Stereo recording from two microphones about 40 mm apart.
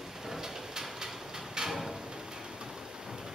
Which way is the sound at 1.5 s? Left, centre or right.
Centre.